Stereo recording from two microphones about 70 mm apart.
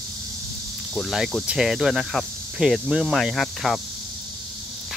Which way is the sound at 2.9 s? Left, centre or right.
Centre.